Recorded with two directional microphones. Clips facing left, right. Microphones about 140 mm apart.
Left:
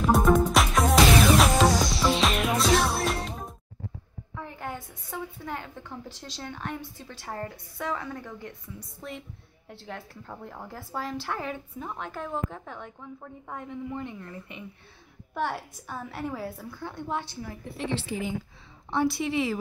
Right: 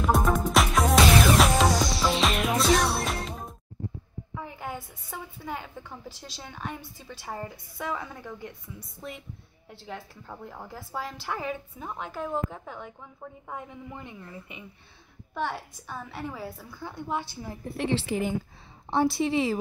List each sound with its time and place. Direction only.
0.0 s music: centre (ahead or behind)
4.4 s a woman's voice: 10° right (ahead or behind)
9.8 s a woman's voice: centre (ahead or behind)
15.3 s a woman's voice: 5° left (ahead or behind)
17.7 s a woman's voice: 90° right
18.9 s a woman's voice: 30° right (ahead or behind)